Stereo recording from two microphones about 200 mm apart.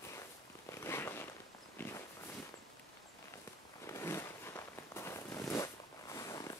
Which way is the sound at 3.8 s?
15° left (ahead or behind).